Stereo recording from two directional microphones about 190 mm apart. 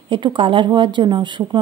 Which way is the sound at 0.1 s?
25° right (ahead or behind).